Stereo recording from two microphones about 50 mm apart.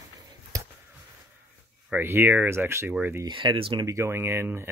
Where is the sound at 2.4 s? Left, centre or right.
Right.